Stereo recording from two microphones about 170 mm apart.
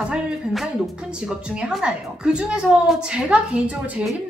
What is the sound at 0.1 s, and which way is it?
A woman's voice, centre (ahead or behind).